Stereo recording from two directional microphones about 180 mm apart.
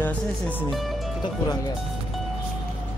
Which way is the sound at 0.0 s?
10° left (ahead or behind).